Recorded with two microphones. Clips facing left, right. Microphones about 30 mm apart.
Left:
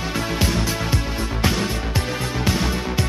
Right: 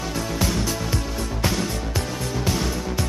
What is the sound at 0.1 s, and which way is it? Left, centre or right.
Music, left.